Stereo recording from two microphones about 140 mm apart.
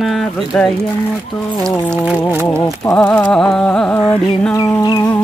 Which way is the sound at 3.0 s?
10° left (ahead or behind).